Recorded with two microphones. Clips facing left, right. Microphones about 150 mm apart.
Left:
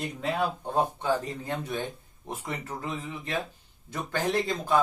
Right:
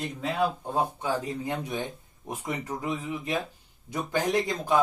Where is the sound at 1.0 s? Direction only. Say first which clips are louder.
Left 1 dB; 10° right (ahead or behind).